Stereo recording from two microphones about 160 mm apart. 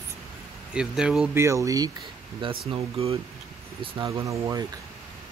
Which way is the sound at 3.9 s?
25° right (ahead or behind).